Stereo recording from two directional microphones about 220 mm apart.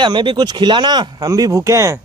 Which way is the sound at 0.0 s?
20° right (ahead or behind).